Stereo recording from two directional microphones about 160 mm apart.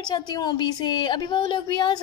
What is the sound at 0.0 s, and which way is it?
A woman's voice, 25° left (ahead or behind).